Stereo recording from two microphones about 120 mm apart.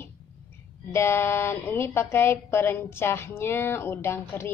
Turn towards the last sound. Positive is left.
turn(degrees=20)  # may be behind; listen again after turning